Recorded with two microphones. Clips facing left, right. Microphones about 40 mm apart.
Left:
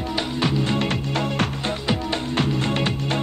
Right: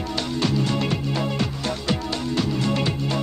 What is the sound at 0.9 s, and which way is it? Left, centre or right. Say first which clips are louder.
Music: left 1 dB; left.